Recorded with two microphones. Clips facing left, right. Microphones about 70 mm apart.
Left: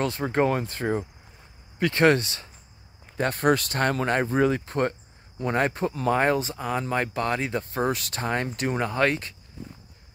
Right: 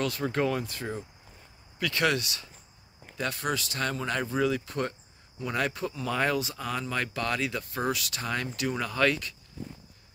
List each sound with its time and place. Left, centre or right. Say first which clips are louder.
0.0 s speech: left 4 dB; left